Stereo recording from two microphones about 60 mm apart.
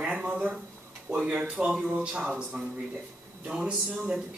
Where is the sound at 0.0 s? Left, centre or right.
Centre.